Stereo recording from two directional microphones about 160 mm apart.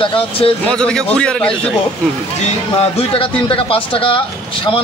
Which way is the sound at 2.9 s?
35° left (ahead or behind).